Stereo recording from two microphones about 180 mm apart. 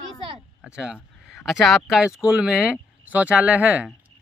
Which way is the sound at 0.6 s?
5° right (ahead or behind).